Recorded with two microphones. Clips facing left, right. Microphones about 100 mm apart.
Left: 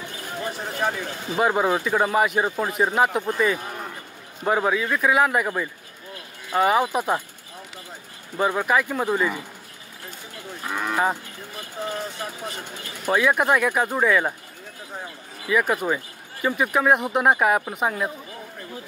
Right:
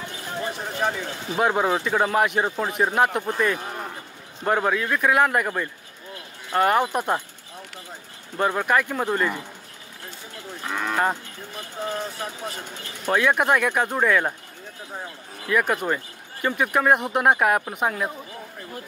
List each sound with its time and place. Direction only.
0.5 s a man's voice: 5° left (ahead or behind)
8.4 s a man's voice: 5° left (ahead or behind)
10.6 s cattle: 10° left (ahead or behind)
13.0 s a man's voice: 5° left (ahead or behind)
15.4 s a man's voice: centre (ahead or behind)